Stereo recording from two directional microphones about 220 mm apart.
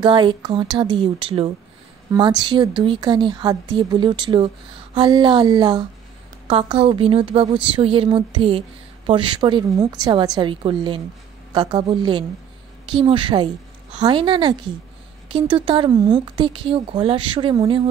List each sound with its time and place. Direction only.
0.0 s a woman's voice: 20° right (ahead or behind)